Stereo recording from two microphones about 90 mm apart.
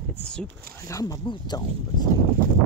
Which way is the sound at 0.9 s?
40° left (ahead or behind).